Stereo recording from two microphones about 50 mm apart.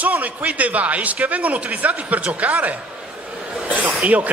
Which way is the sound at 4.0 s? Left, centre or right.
Right.